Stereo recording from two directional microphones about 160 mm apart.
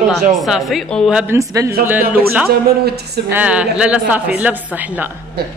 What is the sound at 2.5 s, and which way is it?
Speech, 80° right.